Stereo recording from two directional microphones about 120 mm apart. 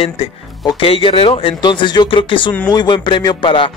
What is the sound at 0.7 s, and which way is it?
Speech, 50° left (ahead or behind).